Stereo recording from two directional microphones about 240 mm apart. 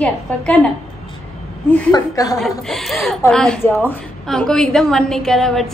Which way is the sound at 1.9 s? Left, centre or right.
Centre.